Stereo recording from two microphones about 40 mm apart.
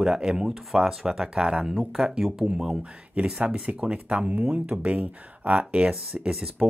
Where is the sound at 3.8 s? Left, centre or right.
Right.